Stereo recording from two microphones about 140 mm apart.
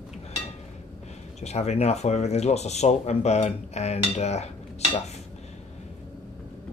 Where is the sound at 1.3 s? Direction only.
50° left (ahead or behind).